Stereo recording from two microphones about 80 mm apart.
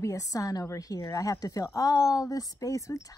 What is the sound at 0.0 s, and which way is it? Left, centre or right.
A child's voice, left.